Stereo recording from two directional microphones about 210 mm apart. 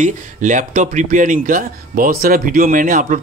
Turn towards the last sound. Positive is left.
turn(degrees=-40)  # may be behind; listen again after turning